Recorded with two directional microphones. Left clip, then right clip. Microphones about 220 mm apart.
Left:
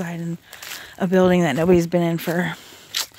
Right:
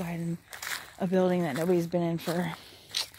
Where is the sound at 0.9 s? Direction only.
35° left (ahead or behind).